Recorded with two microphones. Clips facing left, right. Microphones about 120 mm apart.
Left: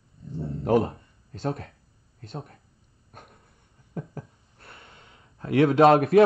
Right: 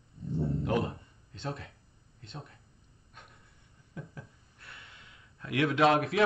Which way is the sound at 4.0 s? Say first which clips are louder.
Left 8 dB; 45° left (ahead or behind).